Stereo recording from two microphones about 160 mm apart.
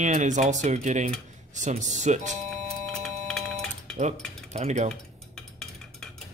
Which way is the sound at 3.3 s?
5° left (ahead or behind).